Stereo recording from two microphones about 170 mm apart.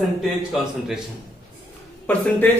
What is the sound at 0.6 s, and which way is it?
Speech, centre (ahead or behind).